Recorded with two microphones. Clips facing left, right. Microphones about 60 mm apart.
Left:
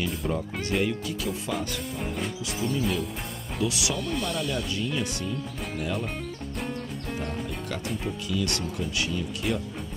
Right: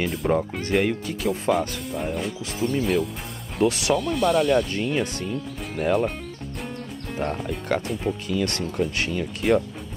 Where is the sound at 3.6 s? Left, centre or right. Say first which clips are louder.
Right 8 dB; right.